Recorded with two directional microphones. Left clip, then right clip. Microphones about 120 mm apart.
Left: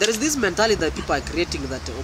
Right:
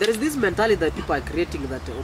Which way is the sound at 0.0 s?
10° left (ahead or behind).